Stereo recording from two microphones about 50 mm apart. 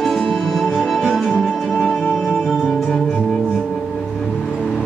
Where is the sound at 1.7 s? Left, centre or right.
Centre.